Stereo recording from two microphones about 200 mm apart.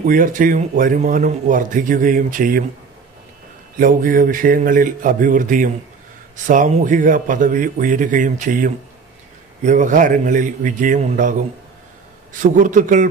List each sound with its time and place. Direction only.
0.0 s speech: 40° right (ahead or behind)
3.7 s a man's voice: 45° right (ahead or behind)